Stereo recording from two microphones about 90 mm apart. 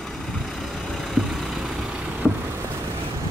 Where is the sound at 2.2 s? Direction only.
5° left (ahead or behind).